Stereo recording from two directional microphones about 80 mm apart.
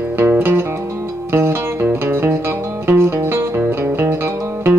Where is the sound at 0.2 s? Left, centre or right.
Right.